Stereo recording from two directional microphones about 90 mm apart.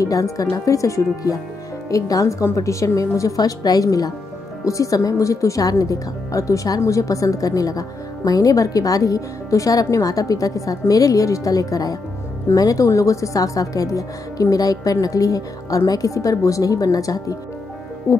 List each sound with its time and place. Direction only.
0.0 s a woman's voice: 40° left (ahead or behind)
18.1 s speech: 30° left (ahead or behind)